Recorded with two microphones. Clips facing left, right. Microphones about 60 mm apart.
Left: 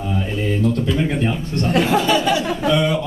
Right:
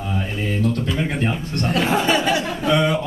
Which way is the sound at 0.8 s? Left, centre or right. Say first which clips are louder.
Left 3 dB; centre.